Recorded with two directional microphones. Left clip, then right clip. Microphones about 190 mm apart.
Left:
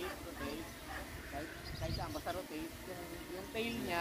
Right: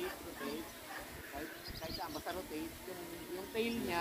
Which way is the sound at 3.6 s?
30° left (ahead or behind).